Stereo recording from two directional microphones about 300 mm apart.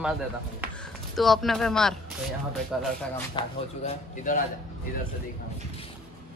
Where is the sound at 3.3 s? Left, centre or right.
Left.